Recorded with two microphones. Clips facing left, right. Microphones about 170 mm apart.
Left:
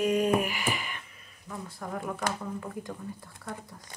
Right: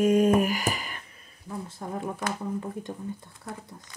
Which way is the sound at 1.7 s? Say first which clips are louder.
Right 1 dB; 25° right (ahead or behind).